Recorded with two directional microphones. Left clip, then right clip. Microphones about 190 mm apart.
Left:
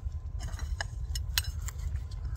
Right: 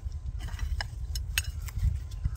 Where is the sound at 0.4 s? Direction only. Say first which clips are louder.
Right 1 dB; 10° left (ahead or behind).